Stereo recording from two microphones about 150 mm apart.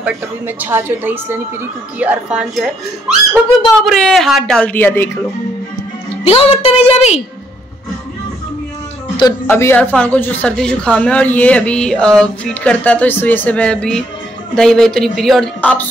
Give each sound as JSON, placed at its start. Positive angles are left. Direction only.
{"t": 0.0, "sound": "a woman's voice", "side_deg": -10}
{"t": 3.8, "sound": "a woman's voice", "side_deg": 0}
{"t": 6.2, "sound": "a woman's voice", "side_deg": 40}
{"t": 9.5, "sound": "a woman's voice", "side_deg": 15}